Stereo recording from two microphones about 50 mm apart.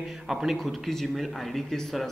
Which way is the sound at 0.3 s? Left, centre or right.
Centre.